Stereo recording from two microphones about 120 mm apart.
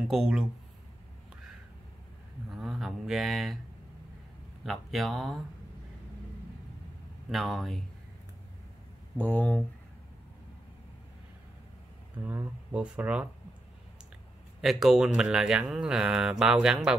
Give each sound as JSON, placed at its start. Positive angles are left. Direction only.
{"t": 0.1, "sound": "speech", "side_deg": -5}
{"t": 2.5, "sound": "a sound", "side_deg": 0}
{"t": 4.6, "sound": "speech", "side_deg": 0}
{"t": 7.2, "sound": "speech", "side_deg": 0}
{"t": 9.2, "sound": "speech", "side_deg": 10}
{"t": 12.3, "sound": "speech", "side_deg": -10}
{"t": 14.6, "sound": "speech", "side_deg": 0}